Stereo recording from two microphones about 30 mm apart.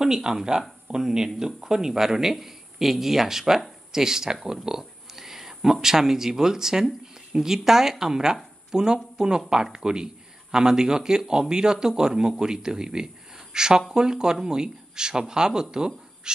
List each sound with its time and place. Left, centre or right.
0.0 s speech: right
16.3 s cat: right